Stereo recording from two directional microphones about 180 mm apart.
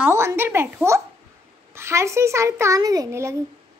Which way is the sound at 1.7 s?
15° right (ahead or behind).